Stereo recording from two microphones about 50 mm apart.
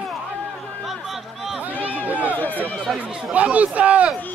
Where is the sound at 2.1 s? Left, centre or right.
Right.